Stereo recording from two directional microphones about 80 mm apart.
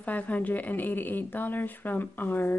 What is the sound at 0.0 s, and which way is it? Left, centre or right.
Speech, centre.